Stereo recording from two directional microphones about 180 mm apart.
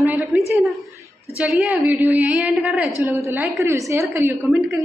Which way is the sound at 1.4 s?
5° right (ahead or behind).